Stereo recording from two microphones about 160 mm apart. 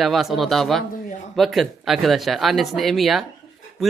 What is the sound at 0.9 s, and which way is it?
Speech, 60° left (ahead or behind).